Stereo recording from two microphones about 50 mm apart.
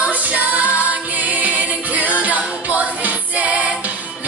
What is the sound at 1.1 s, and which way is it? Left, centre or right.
Music, right.